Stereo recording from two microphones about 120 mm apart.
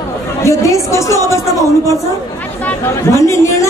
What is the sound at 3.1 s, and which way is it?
Speech, 25° left (ahead or behind).